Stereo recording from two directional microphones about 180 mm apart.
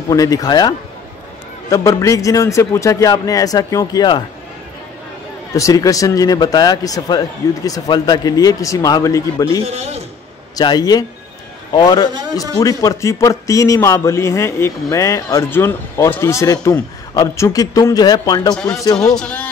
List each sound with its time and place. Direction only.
0.1 s a man's voice: 20° left (ahead or behind)
5.5 s speech: 20° left (ahead or behind)
9.7 s a man's voice: 35° right (ahead or behind)
10.5 s a man's voice: 20° left (ahead or behind)
19.1 s speech: 5° left (ahead or behind)